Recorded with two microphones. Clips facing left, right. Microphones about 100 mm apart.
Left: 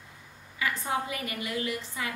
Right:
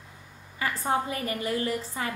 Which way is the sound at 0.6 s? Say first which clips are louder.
Right 3 dB; 35° right (ahead or behind).